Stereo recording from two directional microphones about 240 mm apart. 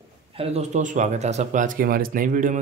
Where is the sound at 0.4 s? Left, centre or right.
Right.